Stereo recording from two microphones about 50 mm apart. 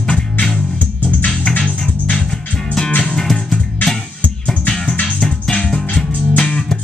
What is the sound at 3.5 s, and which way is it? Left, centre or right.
Music, left.